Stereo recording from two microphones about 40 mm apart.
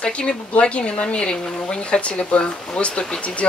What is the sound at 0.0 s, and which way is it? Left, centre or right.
Speech, left.